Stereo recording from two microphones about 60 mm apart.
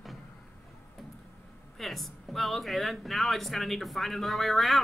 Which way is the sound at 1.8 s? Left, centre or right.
Centre.